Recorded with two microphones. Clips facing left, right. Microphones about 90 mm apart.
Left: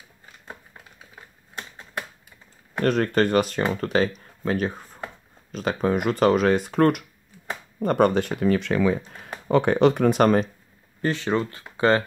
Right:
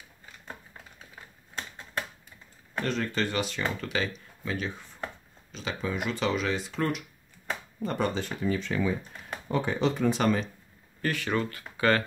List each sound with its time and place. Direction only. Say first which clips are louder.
1.5 s typewriter: left 1 dB; 10° left (ahead or behind)
2.8 s speech: left 9 dB; 55° left (ahead or behind); by 9.3 s 75° left (ahead or behind)
9.5 s speech: left 9 dB; 65° left (ahead or behind)
11.0 s speech: left 5 dB; 25° left (ahead or behind)
11.7 s a sound: left 5 dB; 25° left (ahead or behind)